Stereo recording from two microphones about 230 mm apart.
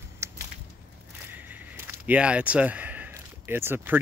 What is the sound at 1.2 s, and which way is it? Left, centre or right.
Speech, centre.